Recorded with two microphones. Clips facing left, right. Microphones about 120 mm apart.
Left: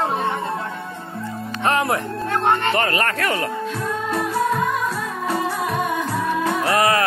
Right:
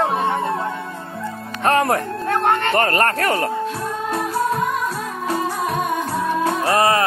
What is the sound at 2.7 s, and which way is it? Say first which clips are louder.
Music: right 3 dB; 45° right (ahead or behind).